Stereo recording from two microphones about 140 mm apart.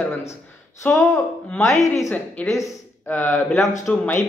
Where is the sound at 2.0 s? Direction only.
10° left (ahead or behind).